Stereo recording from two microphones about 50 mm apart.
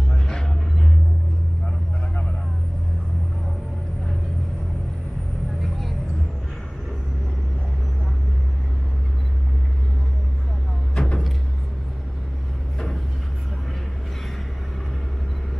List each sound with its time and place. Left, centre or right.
0.1 s music: centre
5.6 s vehicle: centre
11.0 s vehicle: centre
12.7 s a sound: centre